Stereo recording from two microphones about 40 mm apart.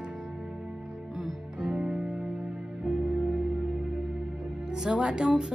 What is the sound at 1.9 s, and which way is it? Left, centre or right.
Music, centre.